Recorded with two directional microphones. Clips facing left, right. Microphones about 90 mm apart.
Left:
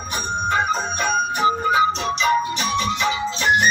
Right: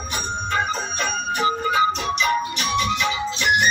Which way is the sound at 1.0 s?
15° left (ahead or behind).